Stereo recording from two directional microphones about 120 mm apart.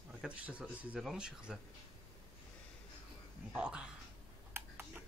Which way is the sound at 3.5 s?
10° right (ahead or behind).